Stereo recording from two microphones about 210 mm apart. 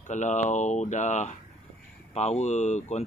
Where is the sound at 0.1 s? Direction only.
35° left (ahead or behind).